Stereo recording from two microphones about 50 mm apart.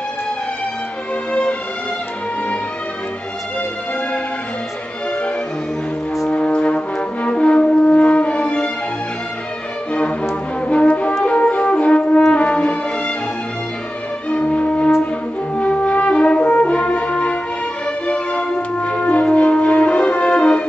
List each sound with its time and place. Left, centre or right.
1.3 s music: left
6.3 s french horn: left
10.7 s music: left
11.2 s flute: left
12.3 s music: left
14.3 s music: left